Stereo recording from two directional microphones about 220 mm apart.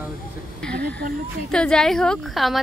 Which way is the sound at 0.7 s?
50° right (ahead or behind).